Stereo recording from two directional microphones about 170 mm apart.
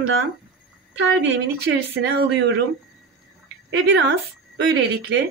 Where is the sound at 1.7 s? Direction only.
90° right.